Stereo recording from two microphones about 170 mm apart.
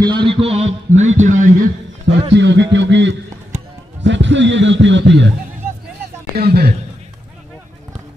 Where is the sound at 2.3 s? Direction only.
90° right.